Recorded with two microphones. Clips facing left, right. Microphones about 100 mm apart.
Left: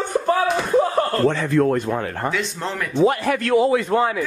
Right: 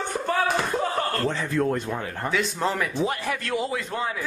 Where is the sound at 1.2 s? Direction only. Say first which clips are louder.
Left 8 dB; 75° left (ahead or behind).